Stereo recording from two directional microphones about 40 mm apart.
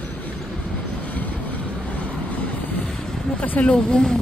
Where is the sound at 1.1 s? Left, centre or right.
Left.